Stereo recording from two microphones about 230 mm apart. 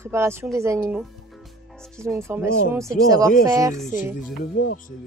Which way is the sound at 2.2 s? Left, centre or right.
Centre.